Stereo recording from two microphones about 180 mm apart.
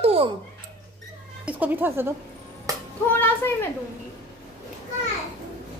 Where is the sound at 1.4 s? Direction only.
10° right (ahead or behind).